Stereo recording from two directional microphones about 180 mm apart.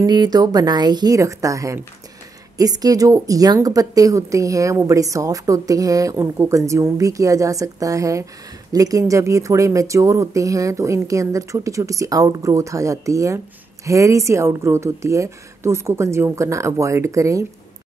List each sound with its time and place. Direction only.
0.0 s a woman's voice: 20° right (ahead or behind)